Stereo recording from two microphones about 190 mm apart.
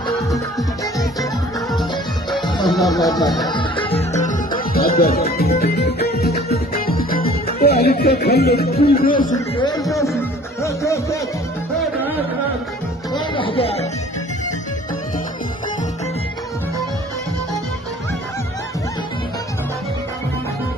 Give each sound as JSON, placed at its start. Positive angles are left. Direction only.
{"t": 2.4, "sound": "music", "side_deg": 20}
{"t": 2.7, "sound": "speech", "side_deg": 0}
{"t": 3.0, "sound": "speech", "side_deg": 20}
{"t": 3.4, "sound": "music", "side_deg": 25}
{"t": 4.7, "sound": "music", "side_deg": 50}
{"t": 8.9, "sound": "a man's voice", "side_deg": 50}
{"t": 9.3, "sound": "speech", "side_deg": 20}
{"t": 10.6, "sound": "music", "side_deg": 15}
{"t": 13.1, "sound": "music", "side_deg": 25}